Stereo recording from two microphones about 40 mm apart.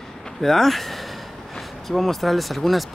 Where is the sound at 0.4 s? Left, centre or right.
Centre.